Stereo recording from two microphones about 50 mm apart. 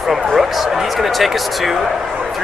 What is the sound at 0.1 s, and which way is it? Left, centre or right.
Speech, centre.